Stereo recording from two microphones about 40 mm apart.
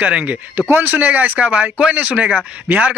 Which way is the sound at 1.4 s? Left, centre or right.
Right.